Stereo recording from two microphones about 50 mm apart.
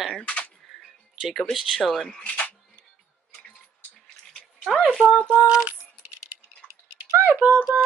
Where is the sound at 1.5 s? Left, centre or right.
Centre.